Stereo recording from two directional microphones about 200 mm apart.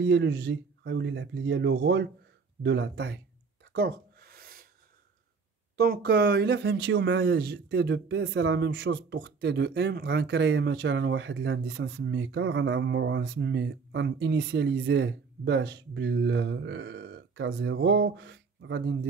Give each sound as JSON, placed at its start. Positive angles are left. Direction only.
{"t": 0.0, "sound": "speech", "side_deg": -65}
{"t": 3.7, "sound": "a sound", "side_deg": -50}
{"t": 5.8, "sound": "speech", "side_deg": -55}